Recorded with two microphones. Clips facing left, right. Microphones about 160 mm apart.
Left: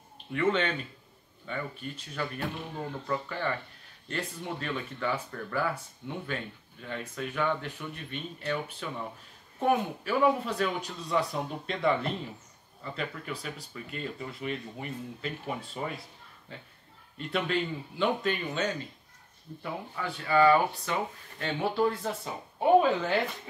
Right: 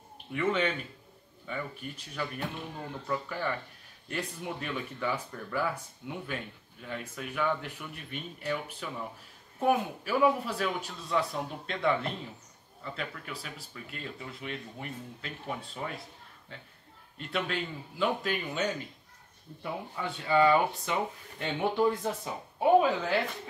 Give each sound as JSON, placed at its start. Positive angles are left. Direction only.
{"t": 0.3, "sound": "speech", "side_deg": -5}
{"t": 17.2, "sound": "speech", "side_deg": 0}
{"t": 19.6, "sound": "speech", "side_deg": -20}